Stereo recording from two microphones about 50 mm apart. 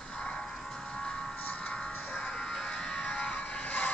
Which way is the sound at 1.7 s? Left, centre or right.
Centre.